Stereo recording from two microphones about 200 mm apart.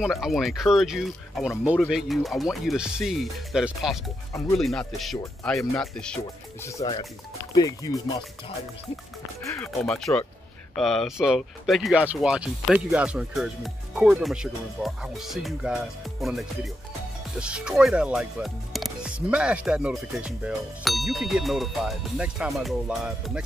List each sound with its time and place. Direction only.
0.0 s speech: centre (ahead or behind)
6.6 s speech: 15° left (ahead or behind)
9.7 s speech: centre (ahead or behind)